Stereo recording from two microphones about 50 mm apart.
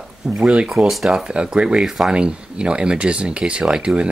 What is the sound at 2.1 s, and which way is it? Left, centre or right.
Speech, right.